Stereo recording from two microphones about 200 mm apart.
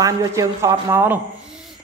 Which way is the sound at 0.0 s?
15° right (ahead or behind).